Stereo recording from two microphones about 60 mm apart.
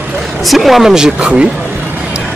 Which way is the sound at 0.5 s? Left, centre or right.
Centre.